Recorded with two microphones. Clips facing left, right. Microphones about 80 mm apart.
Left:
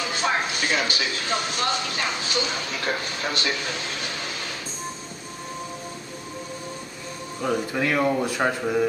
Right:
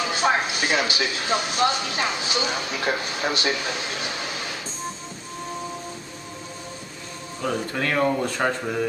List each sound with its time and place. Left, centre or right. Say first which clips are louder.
0.1 s a man's voice: right 3 dB; centre
7.4 s speech: left 1 dB; centre